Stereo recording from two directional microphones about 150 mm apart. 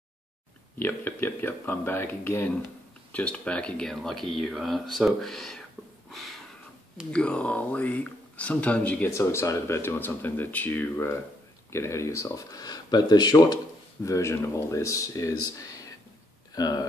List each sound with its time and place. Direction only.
0.7 s speech: 15° left (ahead or behind)
6.0 s a sound: centre (ahead or behind)
7.1 s speech: 5° left (ahead or behind); by 16.8 s 25° left (ahead or behind)